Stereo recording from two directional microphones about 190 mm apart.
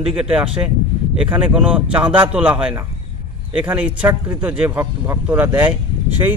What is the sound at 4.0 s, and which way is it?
A man's voice, 10° right (ahead or behind).